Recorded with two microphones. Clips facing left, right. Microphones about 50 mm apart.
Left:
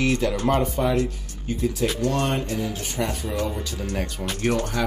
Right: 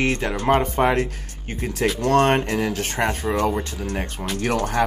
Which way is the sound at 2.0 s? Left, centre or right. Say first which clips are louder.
Right 10 dB; right.